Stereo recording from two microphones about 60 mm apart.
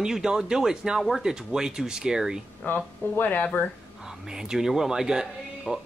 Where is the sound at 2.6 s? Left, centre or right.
Left.